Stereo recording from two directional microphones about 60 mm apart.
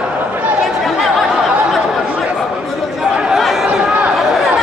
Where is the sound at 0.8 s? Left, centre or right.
Centre.